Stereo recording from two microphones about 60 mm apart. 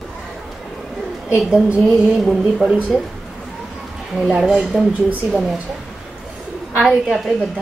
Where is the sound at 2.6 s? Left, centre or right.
Centre.